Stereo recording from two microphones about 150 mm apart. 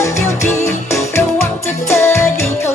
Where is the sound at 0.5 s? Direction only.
20° left (ahead or behind).